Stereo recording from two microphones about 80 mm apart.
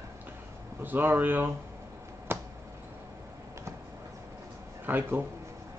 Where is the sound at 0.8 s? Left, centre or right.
Right.